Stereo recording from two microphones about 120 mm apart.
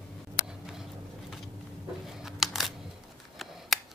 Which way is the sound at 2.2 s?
Centre (ahead or behind).